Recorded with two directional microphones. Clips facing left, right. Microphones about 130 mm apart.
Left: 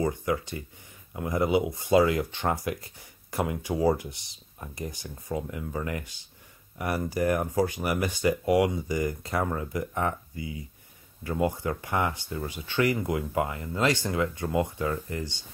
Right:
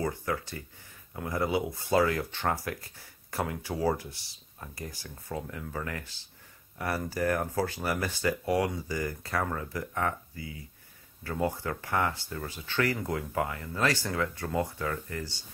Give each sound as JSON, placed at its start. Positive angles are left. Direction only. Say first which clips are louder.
{"t": 0.0, "sound": "speech", "louder": "left 4 dB", "side_deg": 15}